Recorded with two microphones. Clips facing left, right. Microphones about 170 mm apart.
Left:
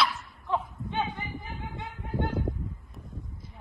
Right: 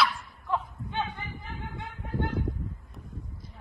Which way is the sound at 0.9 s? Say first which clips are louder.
Left 2 dB; 20° left (ahead or behind).